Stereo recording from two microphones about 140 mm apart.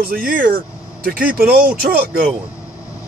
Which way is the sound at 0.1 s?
90° right.